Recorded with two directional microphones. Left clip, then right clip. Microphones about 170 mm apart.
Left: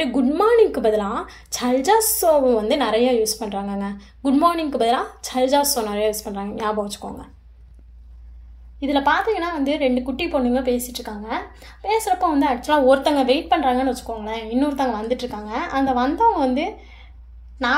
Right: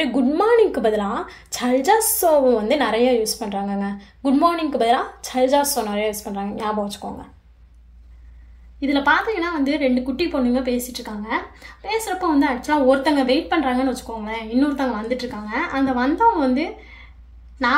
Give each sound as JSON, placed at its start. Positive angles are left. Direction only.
{"t": 0.0, "sound": "a woman's voice", "side_deg": 0}
{"t": 8.8, "sound": "a woman's voice", "side_deg": 15}